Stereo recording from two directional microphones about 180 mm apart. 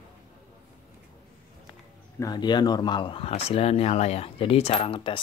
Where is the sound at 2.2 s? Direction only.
25° left (ahead or behind).